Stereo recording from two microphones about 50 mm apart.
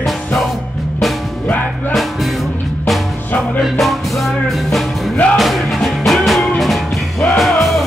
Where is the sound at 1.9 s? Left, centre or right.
Centre.